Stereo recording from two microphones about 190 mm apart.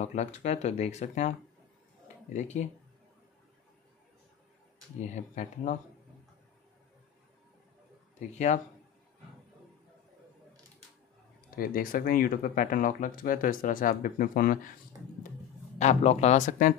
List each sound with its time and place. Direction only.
0.0 s speech: 35° left (ahead or behind)
5.1 s speech: 40° left (ahead or behind)
11.5 s speech: 50° left (ahead or behind)
15.8 s speech: 35° left (ahead or behind)